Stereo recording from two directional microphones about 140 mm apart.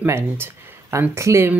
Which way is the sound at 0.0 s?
20° right (ahead or behind).